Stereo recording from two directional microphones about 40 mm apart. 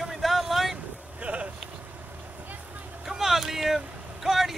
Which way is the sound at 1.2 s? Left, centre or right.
Right.